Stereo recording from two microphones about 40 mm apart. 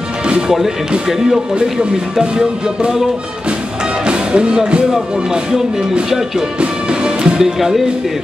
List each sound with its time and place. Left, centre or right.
1.0 s speech: centre
1.5 s speech: right
4.0 s music: right
4.9 s speech: centre
6.0 s speech: centre
6.6 s music: right
7.5 s speech: centre